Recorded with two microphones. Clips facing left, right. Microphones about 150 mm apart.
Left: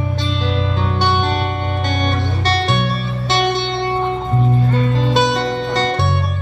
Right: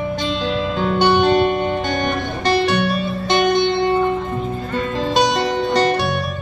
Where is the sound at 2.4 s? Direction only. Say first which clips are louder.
Right 3 dB; 15° right (ahead or behind).